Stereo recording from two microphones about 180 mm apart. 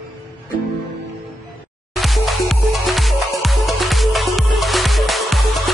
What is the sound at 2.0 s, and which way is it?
Music, centre (ahead or behind).